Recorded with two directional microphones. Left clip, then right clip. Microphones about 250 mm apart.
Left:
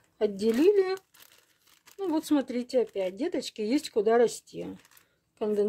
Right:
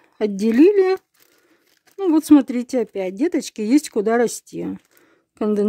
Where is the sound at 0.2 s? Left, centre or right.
Right.